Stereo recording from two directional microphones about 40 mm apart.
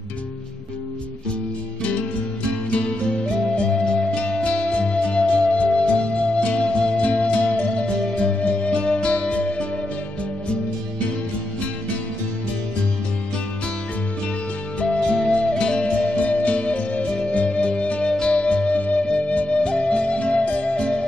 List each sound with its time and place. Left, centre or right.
3.5 s music: left
7.8 s music: left
14.8 s music: left